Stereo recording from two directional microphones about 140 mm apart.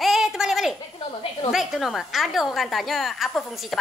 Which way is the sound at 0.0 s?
5° right (ahead or behind).